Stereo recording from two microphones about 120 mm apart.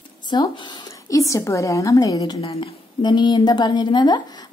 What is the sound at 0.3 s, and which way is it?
Speech, 40° left (ahead or behind).